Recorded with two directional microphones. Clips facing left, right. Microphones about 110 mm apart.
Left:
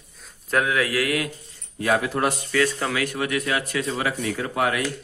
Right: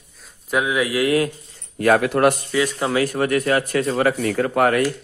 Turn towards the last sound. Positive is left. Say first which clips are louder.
# right 6 dB
turn(degrees=-50)  # may be behind; listen again after turning